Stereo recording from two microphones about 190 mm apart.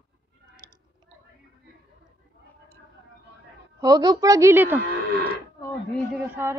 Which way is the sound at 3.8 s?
20° right (ahead or behind).